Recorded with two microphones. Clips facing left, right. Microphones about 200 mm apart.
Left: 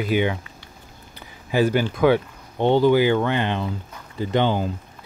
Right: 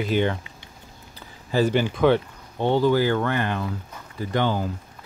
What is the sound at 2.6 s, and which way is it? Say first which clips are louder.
Speech: left 3 dB; 20° left (ahead or behind).